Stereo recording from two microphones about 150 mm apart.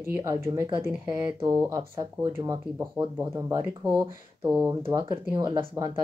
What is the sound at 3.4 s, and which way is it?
Speech, 25° right (ahead or behind).